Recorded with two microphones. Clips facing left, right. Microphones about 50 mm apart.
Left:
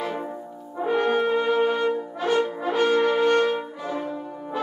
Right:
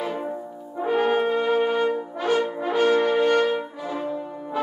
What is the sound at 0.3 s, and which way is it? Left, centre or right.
Brass instrument, centre.